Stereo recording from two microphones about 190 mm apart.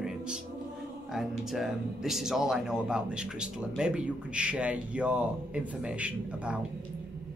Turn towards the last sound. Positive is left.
turn(degrees=-5)  # may be behind; listen again after turning